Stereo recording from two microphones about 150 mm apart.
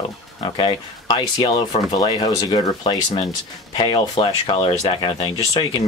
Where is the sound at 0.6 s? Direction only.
35° left (ahead or behind).